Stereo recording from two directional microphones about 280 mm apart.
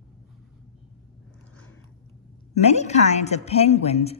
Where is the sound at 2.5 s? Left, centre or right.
Left.